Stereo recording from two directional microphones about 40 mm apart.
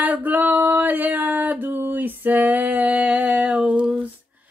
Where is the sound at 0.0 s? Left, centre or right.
Right.